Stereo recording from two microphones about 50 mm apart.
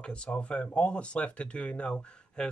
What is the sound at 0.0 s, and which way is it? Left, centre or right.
Speech, centre.